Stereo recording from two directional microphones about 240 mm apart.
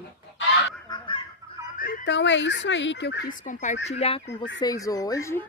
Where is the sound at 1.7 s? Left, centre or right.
Left.